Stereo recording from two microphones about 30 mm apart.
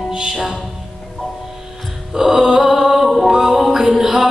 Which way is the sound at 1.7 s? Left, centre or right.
Centre.